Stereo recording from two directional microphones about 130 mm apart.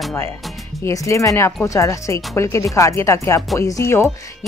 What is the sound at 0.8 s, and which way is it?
Speech, 25° left (ahead or behind).